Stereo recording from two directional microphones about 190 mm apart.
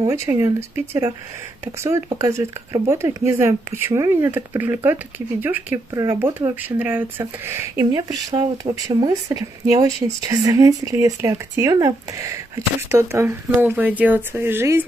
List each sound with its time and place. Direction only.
0.0 s speech: 15° right (ahead or behind)